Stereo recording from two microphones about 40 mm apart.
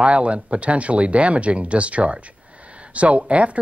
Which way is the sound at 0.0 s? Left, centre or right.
Right.